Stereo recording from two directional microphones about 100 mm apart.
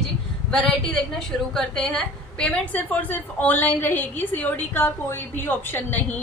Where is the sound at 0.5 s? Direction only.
10° left (ahead or behind).